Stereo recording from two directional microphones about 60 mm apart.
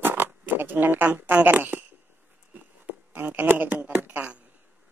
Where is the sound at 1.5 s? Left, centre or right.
Right.